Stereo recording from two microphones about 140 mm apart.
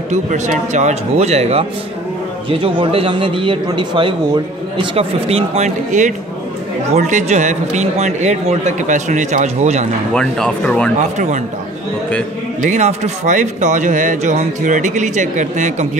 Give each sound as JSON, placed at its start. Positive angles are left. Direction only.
{"t": 0.1, "sound": "speech", "side_deg": -55}
{"t": 4.7, "sound": "speech", "side_deg": -45}
{"t": 10.1, "sound": "speech", "side_deg": 5}
{"t": 11.0, "sound": "speech", "side_deg": -60}
{"t": 12.6, "sound": "speech", "side_deg": -55}